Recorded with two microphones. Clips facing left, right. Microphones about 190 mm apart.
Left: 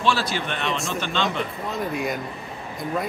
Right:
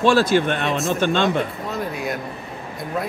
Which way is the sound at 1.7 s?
Centre (ahead or behind).